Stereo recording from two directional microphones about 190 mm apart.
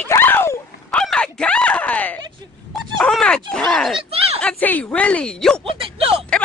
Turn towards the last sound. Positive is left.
turn(degrees=-30)  # may be behind; listen again after turning